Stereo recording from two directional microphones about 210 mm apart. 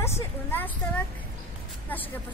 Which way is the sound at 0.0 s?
10° left (ahead or behind).